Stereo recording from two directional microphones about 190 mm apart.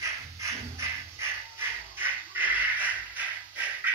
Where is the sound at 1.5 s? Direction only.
10° right (ahead or behind).